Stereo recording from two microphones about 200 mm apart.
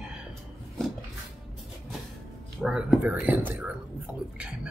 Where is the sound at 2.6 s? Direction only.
5° right (ahead or behind).